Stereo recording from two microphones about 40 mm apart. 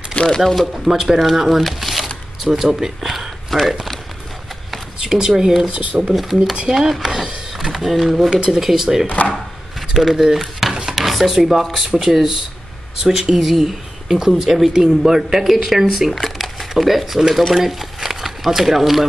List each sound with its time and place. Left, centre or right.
0.1 s a sound: left
0.4 s speech: centre
0.9 s speech: centre
1.2 s speech: centre
2.4 s speech: centre
5.0 s speech: centre
5.9 s speech: right
6.7 s speech: centre
9.2 s chopping: left
9.9 s speech: centre
11.0 s stir: centre
11.9 s speech: centre
17.6 s a sound: centre